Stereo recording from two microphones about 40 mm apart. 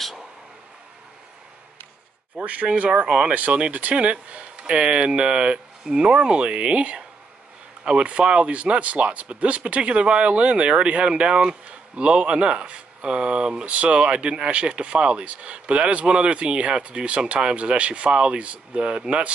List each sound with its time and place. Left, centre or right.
2.4 s speech: right
18.1 s speech: right
18.4 s speech: right